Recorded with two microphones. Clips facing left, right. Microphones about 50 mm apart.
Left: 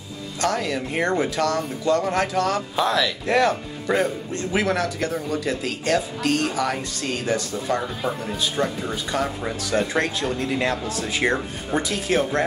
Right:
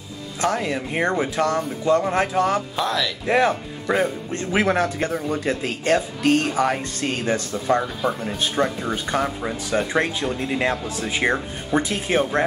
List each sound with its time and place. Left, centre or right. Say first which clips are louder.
0.4 s speech: right 1 dB; right
2.7 s speech: left 2 dB; centre
3.3 s speech: right 2 dB; right
3.8 s speech: right 1 dB; centre
4.3 s speech: right 2 dB; right
8.5 s speech: right 4 dB; centre
8.9 s speech: right 2 dB; right
9.7 s speech: right 1 dB; centre